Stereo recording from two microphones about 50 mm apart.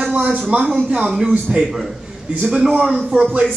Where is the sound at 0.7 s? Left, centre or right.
Centre.